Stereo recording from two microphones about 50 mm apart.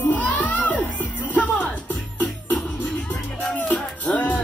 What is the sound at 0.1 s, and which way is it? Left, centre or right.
Music, left.